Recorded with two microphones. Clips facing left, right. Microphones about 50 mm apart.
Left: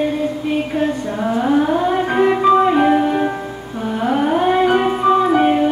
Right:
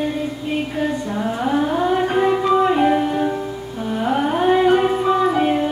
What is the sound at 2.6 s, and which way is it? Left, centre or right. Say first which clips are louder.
Music: left 3 dB; left.